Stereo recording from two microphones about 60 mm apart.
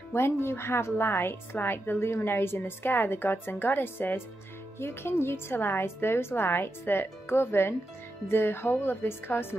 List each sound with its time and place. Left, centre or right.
0.1 s a woman's voice: left